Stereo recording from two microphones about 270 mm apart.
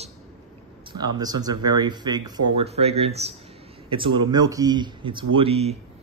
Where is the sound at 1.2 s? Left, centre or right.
Centre.